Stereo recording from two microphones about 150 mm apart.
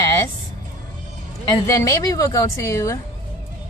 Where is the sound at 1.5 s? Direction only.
20° left (ahead or behind).